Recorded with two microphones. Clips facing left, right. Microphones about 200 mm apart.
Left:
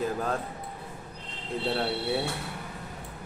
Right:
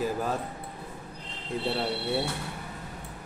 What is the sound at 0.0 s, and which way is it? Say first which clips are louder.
Speech: even; 5° right (ahead or behind).